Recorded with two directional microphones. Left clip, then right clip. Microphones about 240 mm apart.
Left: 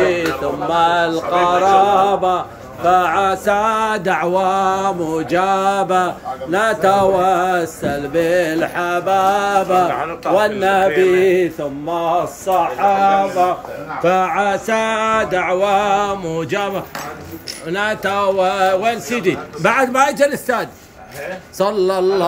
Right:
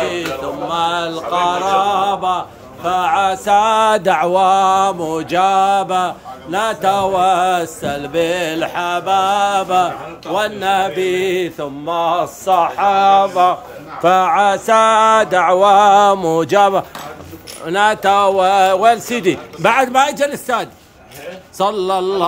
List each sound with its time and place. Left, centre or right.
0.7 s mantra: centre
11.9 s a man's voice: centre
14.0 s mantra: centre
17.6 s a man's voice: centre
21.5 s mantra: centre